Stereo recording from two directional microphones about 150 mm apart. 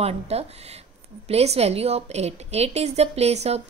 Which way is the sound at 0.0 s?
45° right (ahead or behind).